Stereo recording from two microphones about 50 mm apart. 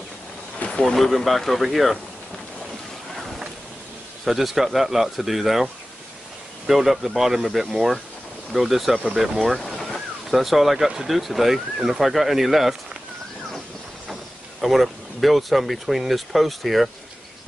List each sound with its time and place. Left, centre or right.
0.6 s a sound: centre
0.9 s speech: centre
4.2 s speech: centre
6.7 s speech: centre
14.6 s speech: centre